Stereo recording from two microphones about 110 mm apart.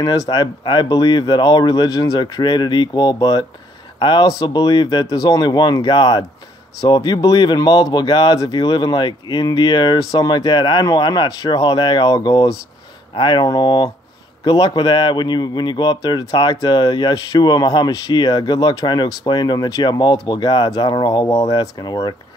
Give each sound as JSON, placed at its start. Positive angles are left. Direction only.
{"t": 0.3, "sound": "speech", "side_deg": 40}